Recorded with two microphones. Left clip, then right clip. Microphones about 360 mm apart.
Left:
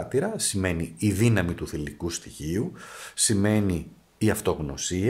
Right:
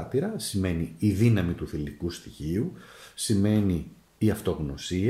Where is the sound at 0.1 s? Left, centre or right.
Centre.